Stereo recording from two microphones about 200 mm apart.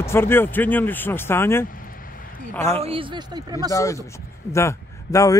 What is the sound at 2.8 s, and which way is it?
Speech, 25° right (ahead or behind).